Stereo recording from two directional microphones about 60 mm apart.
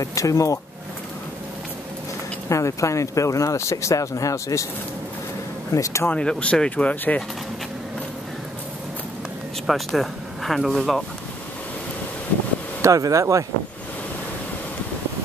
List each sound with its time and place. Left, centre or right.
0.0 s speech: left
2.5 s speech: left
5.7 s speech: left
6.1 s speech: centre
9.7 s speech: centre
12.8 s speech: right